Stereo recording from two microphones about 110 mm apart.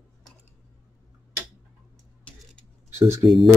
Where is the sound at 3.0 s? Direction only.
25° right (ahead or behind).